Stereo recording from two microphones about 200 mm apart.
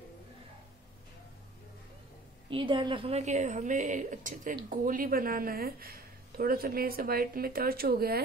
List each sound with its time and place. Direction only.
2.5 s speech: 25° right (ahead or behind); by 8.2 s 50° right (ahead or behind)